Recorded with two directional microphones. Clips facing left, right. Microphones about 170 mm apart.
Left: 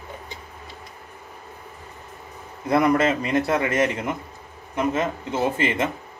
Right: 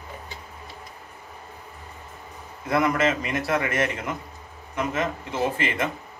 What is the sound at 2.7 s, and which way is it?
A man's voice, 30° left (ahead or behind).